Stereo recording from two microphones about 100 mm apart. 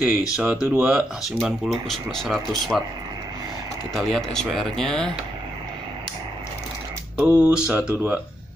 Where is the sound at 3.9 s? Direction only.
Centre (ahead or behind).